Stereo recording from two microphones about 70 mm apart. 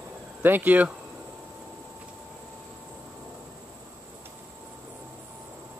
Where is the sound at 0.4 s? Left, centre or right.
Right.